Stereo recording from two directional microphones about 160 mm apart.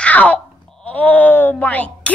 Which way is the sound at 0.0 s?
10° left (ahead or behind).